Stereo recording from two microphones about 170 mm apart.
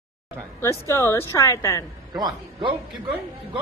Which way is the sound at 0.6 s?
15° left (ahead or behind).